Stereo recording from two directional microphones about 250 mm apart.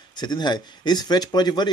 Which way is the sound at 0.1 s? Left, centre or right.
Centre.